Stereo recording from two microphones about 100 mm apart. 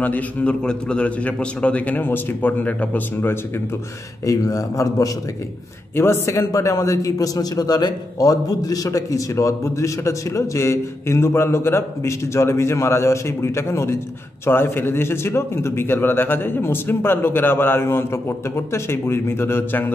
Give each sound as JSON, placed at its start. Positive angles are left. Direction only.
{"t": 0.0, "sound": "a man's voice", "side_deg": 15}
{"t": 4.3, "sound": "a man's voice", "side_deg": 35}